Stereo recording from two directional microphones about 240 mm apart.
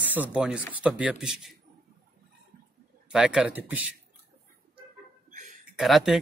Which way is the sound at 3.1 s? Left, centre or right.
Centre.